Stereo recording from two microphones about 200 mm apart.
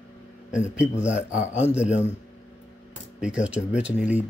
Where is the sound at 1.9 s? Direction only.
35° left (ahead or behind).